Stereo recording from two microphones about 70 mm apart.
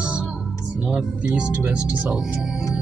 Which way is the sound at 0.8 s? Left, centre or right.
Centre.